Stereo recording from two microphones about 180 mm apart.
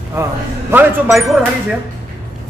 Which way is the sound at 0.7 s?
15° right (ahead or behind).